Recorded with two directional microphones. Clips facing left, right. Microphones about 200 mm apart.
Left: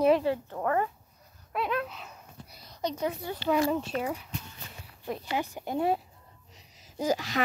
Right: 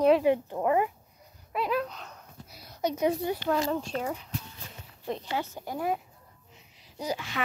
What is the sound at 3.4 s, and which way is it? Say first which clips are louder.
Speech: left 5 dB; 5° left (ahead or behind).